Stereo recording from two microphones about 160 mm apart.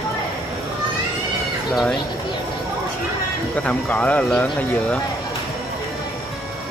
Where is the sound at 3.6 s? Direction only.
10° left (ahead or behind).